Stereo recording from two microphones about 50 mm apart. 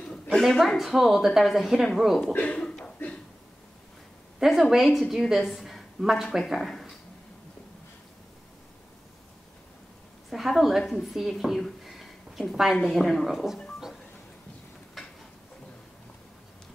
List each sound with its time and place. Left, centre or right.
0.4 s a woman's voice: centre
2.3 s speech: left
4.4 s a woman's voice: centre
10.3 s a woman's voice: centre
11.1 s a sound: centre
12.8 s a woman's voice: centre
15.0 s a sound: centre